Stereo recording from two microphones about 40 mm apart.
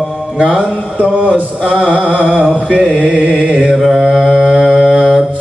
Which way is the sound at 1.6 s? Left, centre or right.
Right.